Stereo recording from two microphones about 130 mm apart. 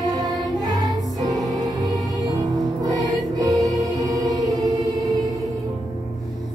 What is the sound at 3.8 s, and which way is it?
Choir, 30° right (ahead or behind).